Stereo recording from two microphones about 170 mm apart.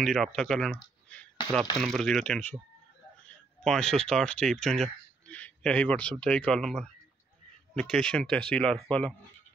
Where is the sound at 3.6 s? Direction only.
5° left (ahead or behind).